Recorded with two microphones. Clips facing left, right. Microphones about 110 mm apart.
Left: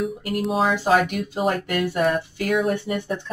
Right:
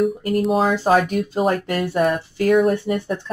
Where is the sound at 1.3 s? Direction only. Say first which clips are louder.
Right 3 dB; 40° right (ahead or behind).